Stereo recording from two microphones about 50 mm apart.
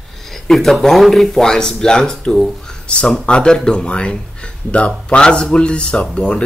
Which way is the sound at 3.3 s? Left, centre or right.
Centre.